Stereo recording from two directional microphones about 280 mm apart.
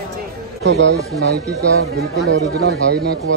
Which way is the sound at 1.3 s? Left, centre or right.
Right.